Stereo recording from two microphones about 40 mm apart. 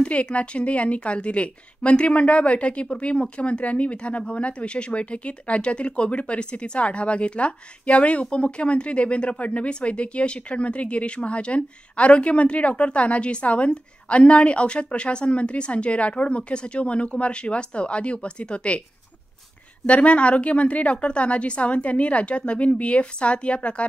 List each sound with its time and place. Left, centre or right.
0.0 s a woman's voice: left
19.9 s speech: left